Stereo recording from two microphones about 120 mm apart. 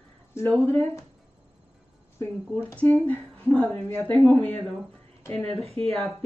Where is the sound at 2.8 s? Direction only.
15° left (ahead or behind).